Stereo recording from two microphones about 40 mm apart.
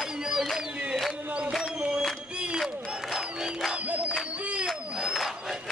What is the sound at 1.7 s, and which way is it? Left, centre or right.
Music, right.